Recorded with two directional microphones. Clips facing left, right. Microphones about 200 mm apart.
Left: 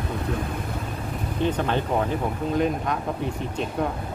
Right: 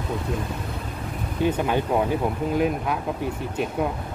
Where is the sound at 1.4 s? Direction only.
10° right (ahead or behind).